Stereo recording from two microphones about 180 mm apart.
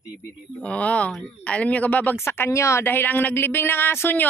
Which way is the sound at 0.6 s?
5° left (ahead or behind).